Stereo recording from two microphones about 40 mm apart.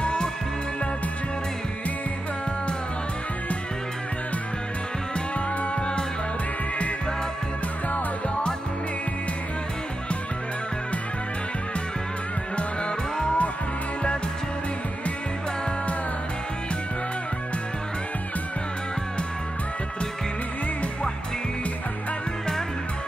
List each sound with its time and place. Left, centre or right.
0.0 s music: left
13.2 s music: left